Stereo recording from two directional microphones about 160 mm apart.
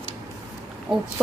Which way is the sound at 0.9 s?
Centre (ahead or behind).